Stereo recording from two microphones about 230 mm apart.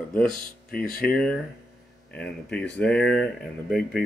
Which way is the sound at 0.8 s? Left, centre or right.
Left.